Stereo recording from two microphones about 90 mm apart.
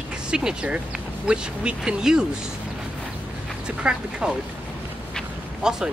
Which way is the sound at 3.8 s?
10° right (ahead or behind).